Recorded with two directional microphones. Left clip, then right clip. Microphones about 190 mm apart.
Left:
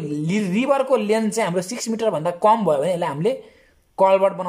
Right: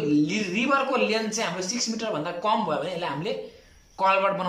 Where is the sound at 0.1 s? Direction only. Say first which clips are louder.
Left 3 dB; 35° left (ahead or behind).